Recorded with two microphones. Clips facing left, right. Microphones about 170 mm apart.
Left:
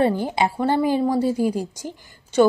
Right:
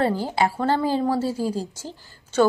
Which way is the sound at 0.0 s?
20° left (ahead or behind).